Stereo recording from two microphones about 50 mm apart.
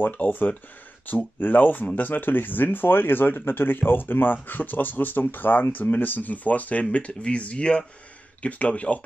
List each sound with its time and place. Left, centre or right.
0.0 s speech: left